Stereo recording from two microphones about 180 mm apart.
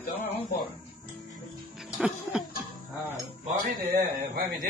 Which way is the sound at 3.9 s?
65° right (ahead or behind).